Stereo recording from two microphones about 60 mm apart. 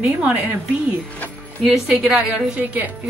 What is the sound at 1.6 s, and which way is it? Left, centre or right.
A woman's voice, centre.